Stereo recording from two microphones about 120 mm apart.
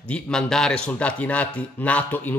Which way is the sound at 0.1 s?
5° left (ahead or behind).